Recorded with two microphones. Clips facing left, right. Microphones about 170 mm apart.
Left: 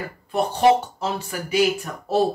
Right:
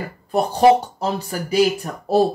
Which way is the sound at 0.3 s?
40° right (ahead or behind).